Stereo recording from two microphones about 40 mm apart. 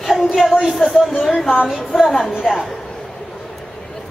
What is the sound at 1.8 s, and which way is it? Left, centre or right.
Speech, centre.